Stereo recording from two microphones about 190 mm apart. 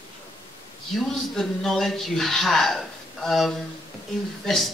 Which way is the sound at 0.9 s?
Centre (ahead or behind).